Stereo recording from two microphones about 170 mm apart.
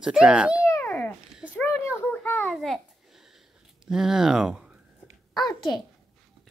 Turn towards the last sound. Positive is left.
turn(degrees=25)  # may be behind; listen again after turning